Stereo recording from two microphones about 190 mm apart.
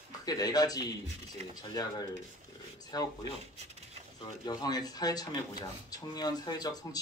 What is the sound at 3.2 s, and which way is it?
Speech, 30° right (ahead or behind).